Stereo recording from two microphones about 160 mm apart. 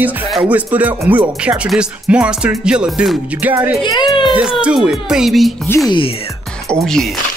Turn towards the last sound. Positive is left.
turn(degrees=5)  # may be behind; listen again after turning